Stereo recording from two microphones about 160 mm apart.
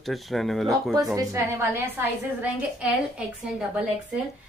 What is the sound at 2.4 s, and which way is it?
Speech, 10° right (ahead or behind).